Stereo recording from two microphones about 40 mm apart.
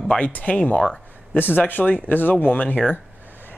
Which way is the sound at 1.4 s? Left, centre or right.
Left.